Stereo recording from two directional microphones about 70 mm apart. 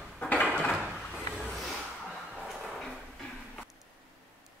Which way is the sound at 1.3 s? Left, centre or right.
Centre.